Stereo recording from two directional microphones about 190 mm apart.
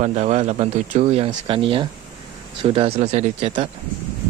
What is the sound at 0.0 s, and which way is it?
Speech, 35° right (ahead or behind).